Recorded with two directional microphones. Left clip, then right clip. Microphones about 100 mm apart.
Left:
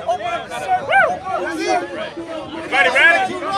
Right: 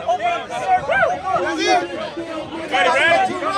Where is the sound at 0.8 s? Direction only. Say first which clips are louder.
Left 3 dB; 35° left (ahead or behind).